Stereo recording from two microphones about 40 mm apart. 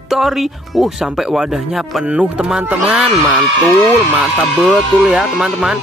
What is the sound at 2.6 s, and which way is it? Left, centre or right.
Speech, right.